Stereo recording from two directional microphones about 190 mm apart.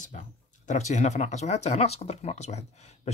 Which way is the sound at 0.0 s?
40° left (ahead or behind).